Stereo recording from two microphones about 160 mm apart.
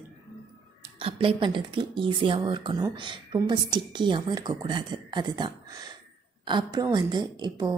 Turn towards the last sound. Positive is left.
turn(degrees=-25)  # may be behind; listen again after turning